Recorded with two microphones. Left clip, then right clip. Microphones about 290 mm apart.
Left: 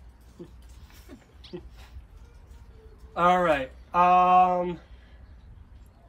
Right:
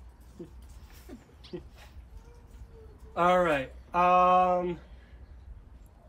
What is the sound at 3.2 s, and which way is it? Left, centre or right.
Speech, centre.